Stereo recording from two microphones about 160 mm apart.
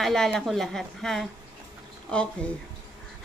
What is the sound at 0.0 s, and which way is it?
A woman's voice, 5° left (ahead or behind).